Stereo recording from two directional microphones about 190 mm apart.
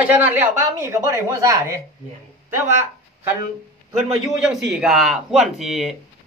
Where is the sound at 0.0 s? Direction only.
10° right (ahead or behind).